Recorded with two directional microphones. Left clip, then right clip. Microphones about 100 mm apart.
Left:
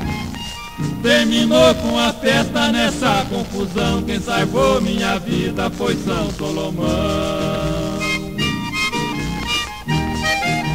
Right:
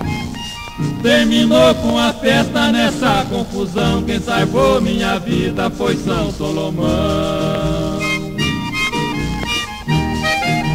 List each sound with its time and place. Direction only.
1.0 s chant: 35° left (ahead or behind)